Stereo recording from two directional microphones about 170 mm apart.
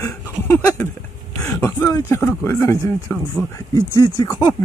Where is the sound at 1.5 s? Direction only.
15° left (ahead or behind).